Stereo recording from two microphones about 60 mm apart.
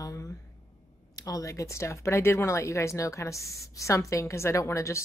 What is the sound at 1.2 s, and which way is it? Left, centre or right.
A woman's voice, left.